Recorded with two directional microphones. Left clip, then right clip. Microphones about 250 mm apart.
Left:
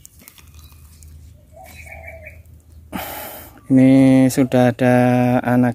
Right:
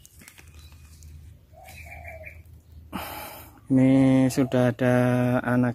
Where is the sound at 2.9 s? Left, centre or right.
Centre.